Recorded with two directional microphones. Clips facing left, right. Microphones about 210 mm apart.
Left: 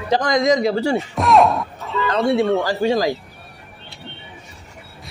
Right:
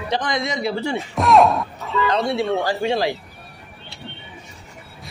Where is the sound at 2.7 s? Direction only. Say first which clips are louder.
Left 3 dB; 40° left (ahead or behind).